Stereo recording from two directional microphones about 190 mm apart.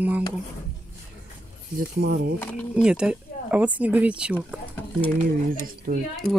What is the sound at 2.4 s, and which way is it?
Speech, 5° left (ahead or behind).